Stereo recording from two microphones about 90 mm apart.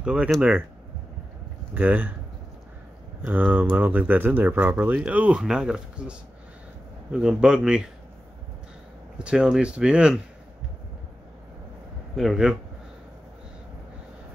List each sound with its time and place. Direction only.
0.0 s speech: 10° right (ahead or behind)
1.7 s speech: 15° right (ahead or behind)
3.2 s speech: 20° right (ahead or behind)
9.2 s speech: 10° right (ahead or behind)
12.2 s speech: 5° right (ahead or behind)